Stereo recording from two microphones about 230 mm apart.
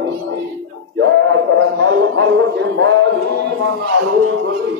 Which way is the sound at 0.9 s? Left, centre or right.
Right.